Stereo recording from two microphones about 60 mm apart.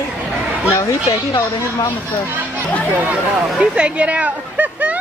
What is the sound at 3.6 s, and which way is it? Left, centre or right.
Speech, centre.